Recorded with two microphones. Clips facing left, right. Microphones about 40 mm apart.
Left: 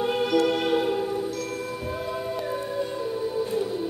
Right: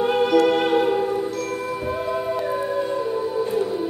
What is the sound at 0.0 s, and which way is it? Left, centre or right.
Music, centre.